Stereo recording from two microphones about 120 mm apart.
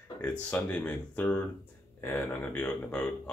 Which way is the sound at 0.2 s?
15° left (ahead or behind).